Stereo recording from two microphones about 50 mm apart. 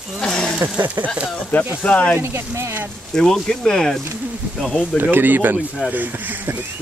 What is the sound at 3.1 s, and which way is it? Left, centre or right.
Speech, centre.